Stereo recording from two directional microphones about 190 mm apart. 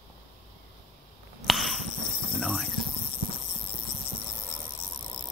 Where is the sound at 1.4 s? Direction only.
Centre (ahead or behind).